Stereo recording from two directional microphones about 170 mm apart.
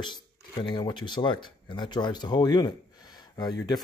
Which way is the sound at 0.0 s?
25° left (ahead or behind).